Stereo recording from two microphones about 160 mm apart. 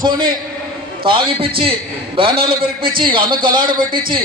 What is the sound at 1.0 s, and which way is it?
A man's voice, 35° right (ahead or behind).